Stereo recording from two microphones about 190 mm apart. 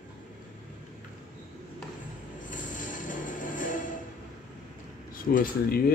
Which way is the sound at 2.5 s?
45° left (ahead or behind).